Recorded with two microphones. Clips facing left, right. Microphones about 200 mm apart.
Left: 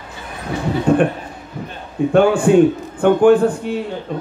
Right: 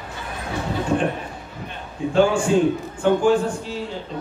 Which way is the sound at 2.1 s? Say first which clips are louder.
Left 6 dB; 60° left (ahead or behind).